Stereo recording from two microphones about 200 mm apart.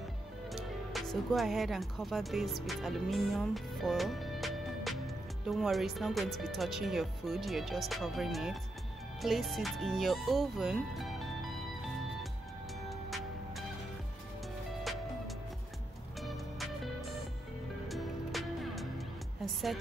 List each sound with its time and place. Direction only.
0.5 s speech: centre (ahead or behind)
14.8 s music: centre (ahead or behind)